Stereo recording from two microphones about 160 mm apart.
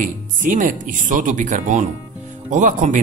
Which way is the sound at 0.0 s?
55° right (ahead or behind).